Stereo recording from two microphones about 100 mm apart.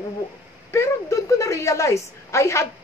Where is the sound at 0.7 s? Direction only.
30° left (ahead or behind).